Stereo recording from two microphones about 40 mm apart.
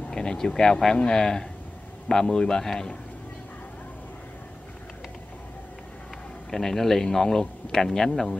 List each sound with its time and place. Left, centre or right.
0.1 s speech: centre
6.5 s speech: centre